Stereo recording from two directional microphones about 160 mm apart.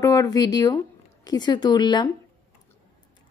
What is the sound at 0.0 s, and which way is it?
A woman's voice, 25° left (ahead or behind).